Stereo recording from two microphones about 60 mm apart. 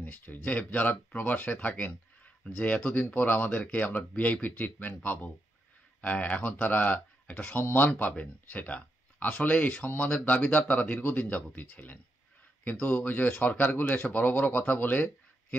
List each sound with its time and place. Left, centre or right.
0.0 s speech: left
5.9 s a sound: left
6.5 s speech: left